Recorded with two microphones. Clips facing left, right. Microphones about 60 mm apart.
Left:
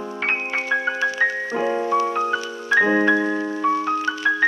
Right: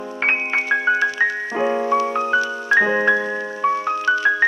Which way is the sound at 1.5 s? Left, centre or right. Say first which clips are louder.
Right 2 dB; right.